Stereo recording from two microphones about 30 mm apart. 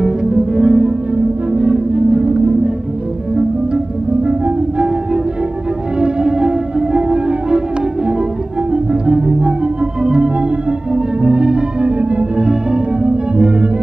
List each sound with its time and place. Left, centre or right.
0.0 s music: right
2.0 s music: right
3.7 s music: right
5.9 s music: right
9.0 s music: right
10.0 s organ: right
11.1 s music: right
11.8 s music: right
12.4 s music: right